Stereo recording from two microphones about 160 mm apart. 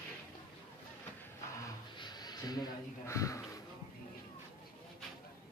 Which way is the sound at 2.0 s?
25° left (ahead or behind).